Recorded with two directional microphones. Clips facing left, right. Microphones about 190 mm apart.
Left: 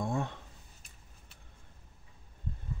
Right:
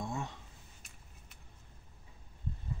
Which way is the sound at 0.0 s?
55° left (ahead or behind).